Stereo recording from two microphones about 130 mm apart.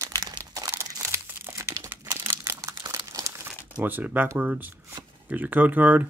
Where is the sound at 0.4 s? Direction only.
20° right (ahead or behind).